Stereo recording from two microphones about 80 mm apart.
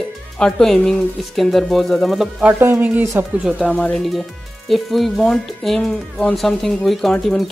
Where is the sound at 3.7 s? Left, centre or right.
Centre.